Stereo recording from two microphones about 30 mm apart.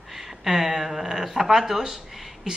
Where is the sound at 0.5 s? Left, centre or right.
Centre.